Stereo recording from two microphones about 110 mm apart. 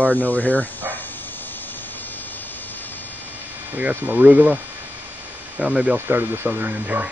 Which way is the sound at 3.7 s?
15° right (ahead or behind).